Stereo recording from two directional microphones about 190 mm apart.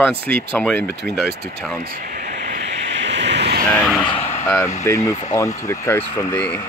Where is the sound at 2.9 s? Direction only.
65° right (ahead or behind).